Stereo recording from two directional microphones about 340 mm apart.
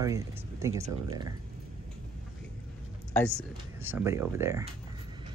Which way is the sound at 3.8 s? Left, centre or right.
Centre.